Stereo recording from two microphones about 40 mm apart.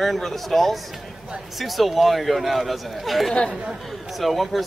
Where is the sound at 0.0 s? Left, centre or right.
Centre.